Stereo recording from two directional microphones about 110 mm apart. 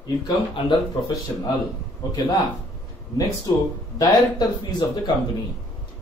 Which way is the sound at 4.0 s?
40° left (ahead or behind).